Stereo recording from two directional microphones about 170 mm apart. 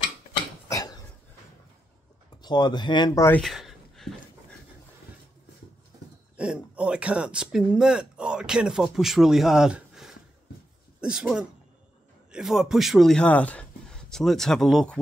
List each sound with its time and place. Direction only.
0.7 s cough: 20° left (ahead or behind)
2.4 s speech: 25° left (ahead or behind)
3.3 s a sound: 5° left (ahead or behind)
6.3 s a man's voice: 5° right (ahead or behind)